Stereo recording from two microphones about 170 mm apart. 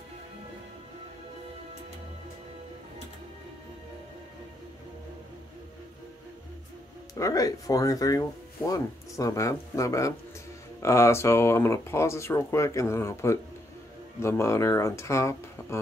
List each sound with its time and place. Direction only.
7.2 s speech: 20° left (ahead or behind)